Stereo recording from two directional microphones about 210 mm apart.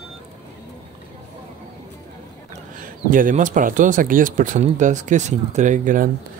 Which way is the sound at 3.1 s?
40° right (ahead or behind).